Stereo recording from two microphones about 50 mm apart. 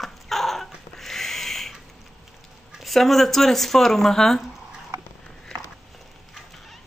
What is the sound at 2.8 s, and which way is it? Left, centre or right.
Speech, centre.